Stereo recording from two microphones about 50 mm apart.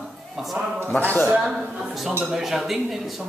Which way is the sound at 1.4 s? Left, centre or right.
Centre.